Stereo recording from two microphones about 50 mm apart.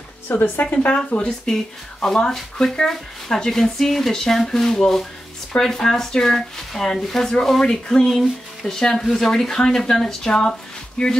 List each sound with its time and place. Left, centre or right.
0.4 s speech: left
0.8 s speech: left